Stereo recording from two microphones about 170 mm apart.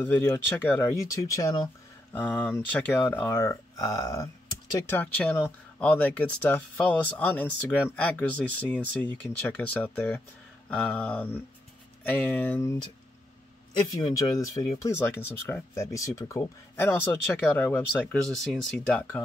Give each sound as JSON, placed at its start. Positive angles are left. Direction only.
{"t": 0.0, "sound": "speech", "side_deg": 10}
{"t": 2.1, "sound": "speech", "side_deg": 10}
{"t": 14.0, "sound": "speech", "side_deg": 20}